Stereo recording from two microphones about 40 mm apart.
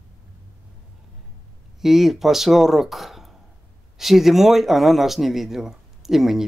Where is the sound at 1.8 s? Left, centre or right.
Centre.